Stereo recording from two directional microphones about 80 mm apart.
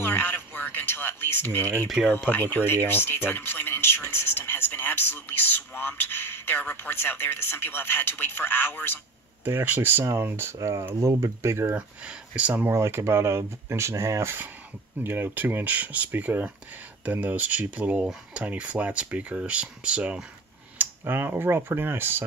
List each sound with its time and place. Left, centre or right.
0.0 s speech: left
1.9 s speech: centre
2.3 s speech: left
9.4 s speech: right
10.6 s speech: right
11.7 s speech: centre
12.7 s speech: right; by 20.2 s centre
20.7 s speech: right